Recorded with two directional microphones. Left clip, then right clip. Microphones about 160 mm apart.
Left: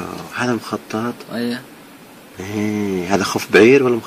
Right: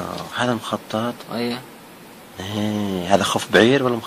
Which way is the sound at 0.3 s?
Centre (ahead or behind).